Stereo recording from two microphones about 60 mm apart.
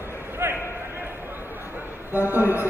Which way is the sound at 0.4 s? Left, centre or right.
Right.